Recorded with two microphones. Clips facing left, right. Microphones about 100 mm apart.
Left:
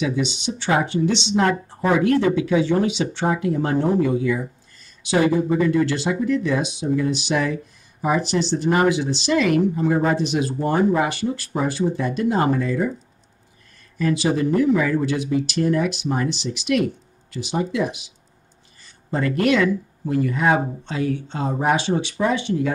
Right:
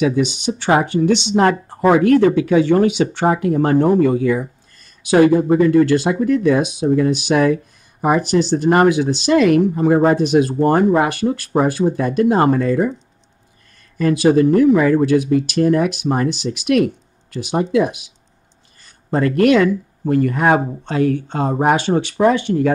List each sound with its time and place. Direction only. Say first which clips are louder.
0.0 s speech: right 6 dB; 50° right (ahead or behind)
13.9 s speech: right 7 dB; 50° right (ahead or behind)